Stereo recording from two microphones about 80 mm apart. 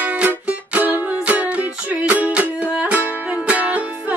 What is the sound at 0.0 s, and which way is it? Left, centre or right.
Music, right.